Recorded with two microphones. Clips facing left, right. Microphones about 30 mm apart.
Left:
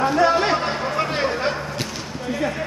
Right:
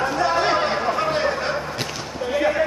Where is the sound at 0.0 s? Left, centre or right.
Centre.